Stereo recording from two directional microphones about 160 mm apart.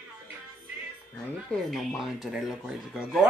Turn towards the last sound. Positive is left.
turn(degrees=-5)  # may be behind; listen again after turning